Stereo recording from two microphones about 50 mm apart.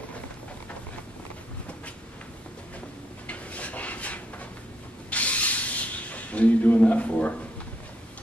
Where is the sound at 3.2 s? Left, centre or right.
Left.